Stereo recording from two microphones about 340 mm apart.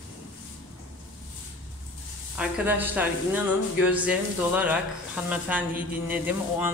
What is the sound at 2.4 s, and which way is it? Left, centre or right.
Speech, centre.